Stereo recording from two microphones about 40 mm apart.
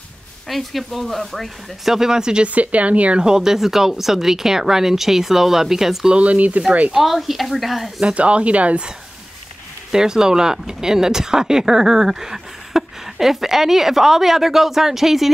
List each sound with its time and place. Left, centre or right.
0.5 s speech: centre
1.9 s speech: centre
2.4 s speech: right
3.2 s speech: centre
6.1 s speech: right
7.0 s speech: centre
8.0 s speech: right
9.8 s speech: centre